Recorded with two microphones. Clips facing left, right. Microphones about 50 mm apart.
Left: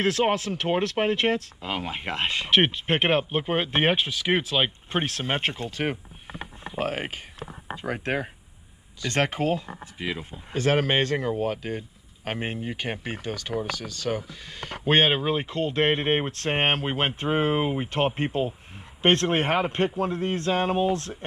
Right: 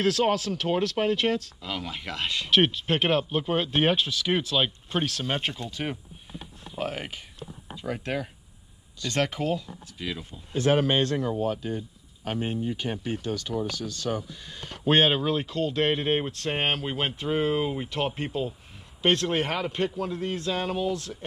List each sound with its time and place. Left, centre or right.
0.0 s speech: left
12.4 s speech: left
14.9 s speech: centre; by 21.2 s left